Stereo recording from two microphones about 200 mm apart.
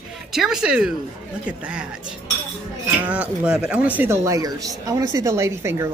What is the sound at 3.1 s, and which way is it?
Speech, 5° right (ahead or behind).